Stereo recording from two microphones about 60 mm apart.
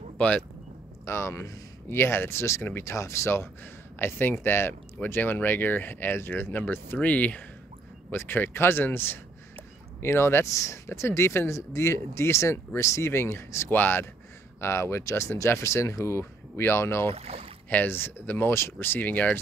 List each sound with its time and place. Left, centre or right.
0.2 s speech: left
1.0 s speech: left
4.0 s speech: left
6.5 s speech: left
8.1 s speech: left
13.7 s speech: left
14.6 s speech: left
17.6 s speech: left